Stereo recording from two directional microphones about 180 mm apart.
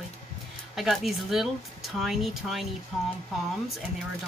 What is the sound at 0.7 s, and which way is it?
Speech, centre (ahead or behind).